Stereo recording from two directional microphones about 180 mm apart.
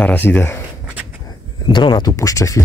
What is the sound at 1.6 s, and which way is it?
Speech, 25° left (ahead or behind).